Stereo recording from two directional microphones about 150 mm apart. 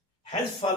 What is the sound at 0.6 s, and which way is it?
Speech, 40° left (ahead or behind).